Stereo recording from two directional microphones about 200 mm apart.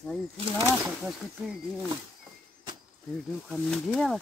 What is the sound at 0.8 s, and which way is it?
Speech, 5° right (ahead or behind).